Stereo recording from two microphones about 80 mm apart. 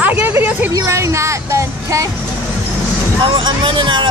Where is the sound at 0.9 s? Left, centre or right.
Right.